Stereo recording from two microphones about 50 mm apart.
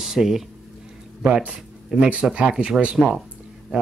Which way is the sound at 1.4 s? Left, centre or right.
Centre.